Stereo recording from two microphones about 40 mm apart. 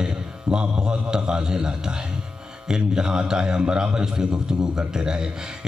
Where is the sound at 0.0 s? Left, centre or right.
Centre.